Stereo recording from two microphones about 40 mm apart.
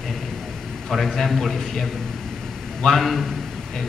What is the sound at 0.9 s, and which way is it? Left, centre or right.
A man's voice, centre.